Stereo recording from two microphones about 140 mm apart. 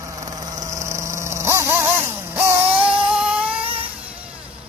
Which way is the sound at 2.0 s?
15° right (ahead or behind).